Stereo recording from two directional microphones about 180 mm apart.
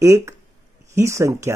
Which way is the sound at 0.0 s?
15° right (ahead or behind).